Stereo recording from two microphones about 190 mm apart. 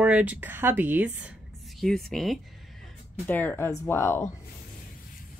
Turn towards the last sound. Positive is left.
turn(degrees=10)  # may be behind; listen again after turning